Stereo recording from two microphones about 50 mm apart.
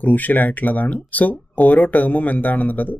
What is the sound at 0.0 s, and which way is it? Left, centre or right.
Speech, left.